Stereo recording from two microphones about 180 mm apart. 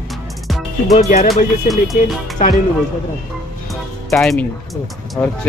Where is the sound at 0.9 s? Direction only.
35° left (ahead or behind).